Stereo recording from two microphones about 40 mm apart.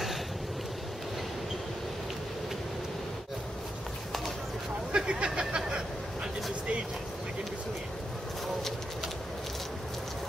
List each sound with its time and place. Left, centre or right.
4.9 s speech: right